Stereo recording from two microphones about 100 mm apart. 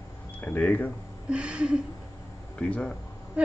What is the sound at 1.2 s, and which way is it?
Speech, 10° right (ahead or behind).